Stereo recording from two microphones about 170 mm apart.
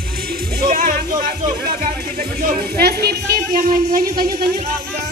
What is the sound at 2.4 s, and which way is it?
Speech, 60° right (ahead or behind).